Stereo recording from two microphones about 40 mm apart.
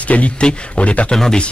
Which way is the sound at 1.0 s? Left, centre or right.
Centre.